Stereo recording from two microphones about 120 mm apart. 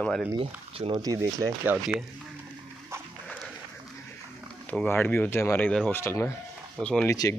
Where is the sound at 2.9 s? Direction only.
20° right (ahead or behind).